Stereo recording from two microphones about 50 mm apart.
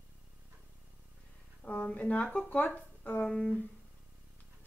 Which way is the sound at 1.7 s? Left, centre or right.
Centre.